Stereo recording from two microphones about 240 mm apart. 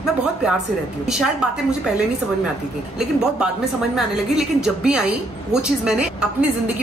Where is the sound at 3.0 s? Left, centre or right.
Centre.